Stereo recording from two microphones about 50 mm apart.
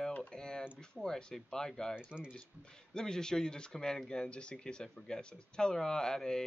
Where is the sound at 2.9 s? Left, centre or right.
Centre.